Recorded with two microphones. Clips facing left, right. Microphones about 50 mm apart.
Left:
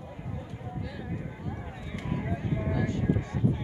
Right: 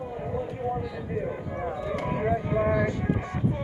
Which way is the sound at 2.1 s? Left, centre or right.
Right.